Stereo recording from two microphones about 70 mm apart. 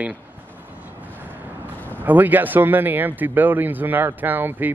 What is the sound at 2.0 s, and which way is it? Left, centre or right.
Speech, right.